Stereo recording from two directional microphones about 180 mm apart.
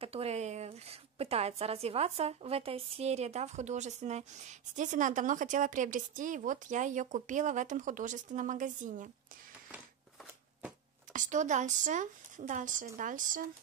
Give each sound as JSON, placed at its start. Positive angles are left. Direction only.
{"t": 0.0, "sound": "a woman's voice", "side_deg": -35}
{"t": 11.1, "sound": "a woman's voice", "side_deg": -45}